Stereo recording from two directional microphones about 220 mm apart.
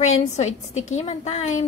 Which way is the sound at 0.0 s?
30° left (ahead or behind).